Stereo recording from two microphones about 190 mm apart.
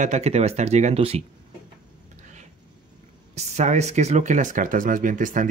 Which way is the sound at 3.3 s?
35° right (ahead or behind).